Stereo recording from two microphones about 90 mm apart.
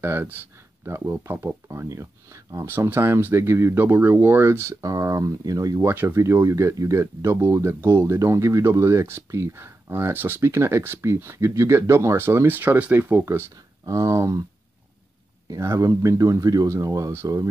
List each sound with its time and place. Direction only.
0.0 s speech: 25° right (ahead or behind); by 5.8 s 45° right (ahead or behind)
5.8 s speech: 25° right (ahead or behind)
15.4 s speech: 35° right (ahead or behind)